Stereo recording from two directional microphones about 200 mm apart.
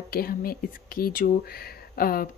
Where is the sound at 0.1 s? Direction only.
50° left (ahead or behind).